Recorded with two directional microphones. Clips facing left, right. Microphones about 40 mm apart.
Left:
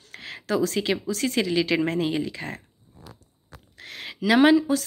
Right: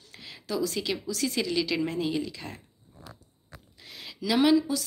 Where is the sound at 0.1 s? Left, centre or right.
Left.